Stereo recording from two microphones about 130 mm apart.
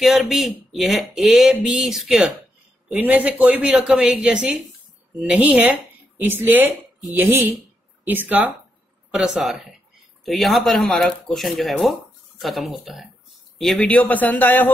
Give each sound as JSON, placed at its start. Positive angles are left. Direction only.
{"t": 0.0, "sound": "a man's voice", "side_deg": 0}